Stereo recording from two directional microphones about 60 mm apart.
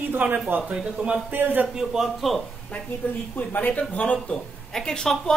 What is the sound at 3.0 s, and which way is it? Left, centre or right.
Speech, left.